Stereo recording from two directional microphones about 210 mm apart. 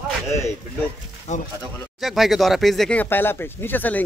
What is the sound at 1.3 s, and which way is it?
Speech, 35° left (ahead or behind).